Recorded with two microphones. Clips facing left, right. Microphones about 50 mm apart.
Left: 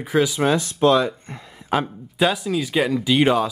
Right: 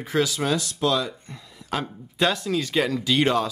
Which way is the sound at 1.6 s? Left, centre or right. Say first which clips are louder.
Left 6 dB; centre.